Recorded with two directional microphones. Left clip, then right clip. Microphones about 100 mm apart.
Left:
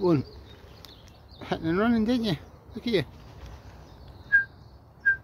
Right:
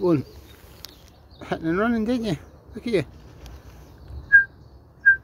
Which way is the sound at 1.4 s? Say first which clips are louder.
Right 2 dB; 10° left (ahead or behind).